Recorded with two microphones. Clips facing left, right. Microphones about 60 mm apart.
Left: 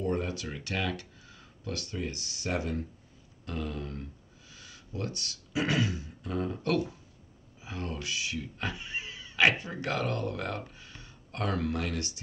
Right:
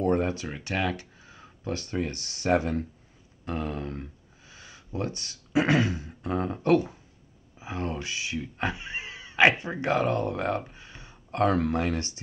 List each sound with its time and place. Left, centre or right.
0.0 s a sound: right
0.3 s speech: right
2.0 s speech: right
3.4 s speech: right